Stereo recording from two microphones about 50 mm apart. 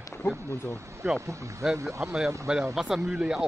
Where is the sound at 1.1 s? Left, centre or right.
Right.